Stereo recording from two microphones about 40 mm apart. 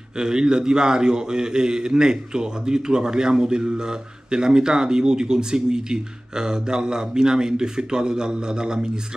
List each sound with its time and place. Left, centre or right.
0.2 s speech: centre